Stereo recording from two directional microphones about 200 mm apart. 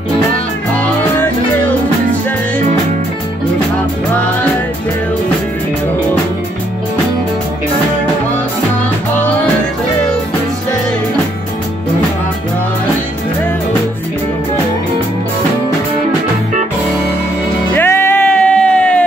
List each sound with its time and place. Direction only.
17.7 s music: 10° left (ahead or behind)